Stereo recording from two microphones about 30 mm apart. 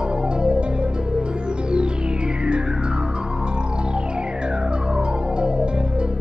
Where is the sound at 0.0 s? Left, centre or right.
Right.